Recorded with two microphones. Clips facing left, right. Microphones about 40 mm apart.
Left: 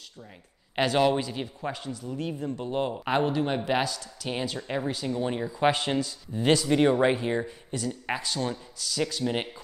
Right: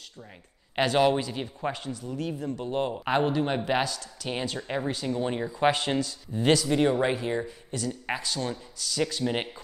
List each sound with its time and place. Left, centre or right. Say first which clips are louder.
0.7 s speech: right 1 dB; centre
2.1 s speech: even; left
2.6 s speech: even; centre
5.7 s speech: even; centre